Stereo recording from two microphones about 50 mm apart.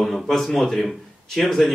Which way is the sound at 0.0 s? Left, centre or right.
Centre.